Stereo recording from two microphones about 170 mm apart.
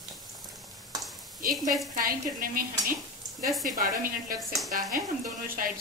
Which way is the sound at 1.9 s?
55° right (ahead or behind).